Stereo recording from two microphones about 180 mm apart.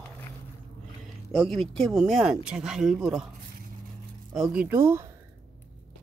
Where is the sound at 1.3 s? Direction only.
Centre (ahead or behind).